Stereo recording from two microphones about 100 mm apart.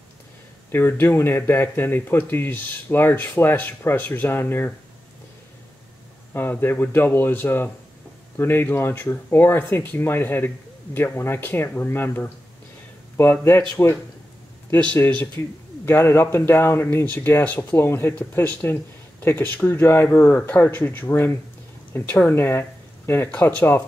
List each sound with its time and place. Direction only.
0.7 s speech: 20° left (ahead or behind)
6.3 s speech: 20° left (ahead or behind)
14.7 s speech: 10° left (ahead or behind)
15.8 s speech: 25° left (ahead or behind)